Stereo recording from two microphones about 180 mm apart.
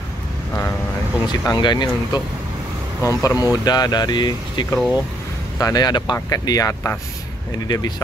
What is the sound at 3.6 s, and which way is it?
Speech, 20° left (ahead or behind).